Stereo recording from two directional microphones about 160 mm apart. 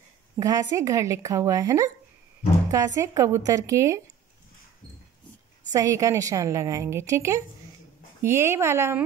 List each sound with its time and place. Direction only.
0.4 s a woman's voice: 20° right (ahead or behind)
5.7 s a woman's voice: 20° right (ahead or behind)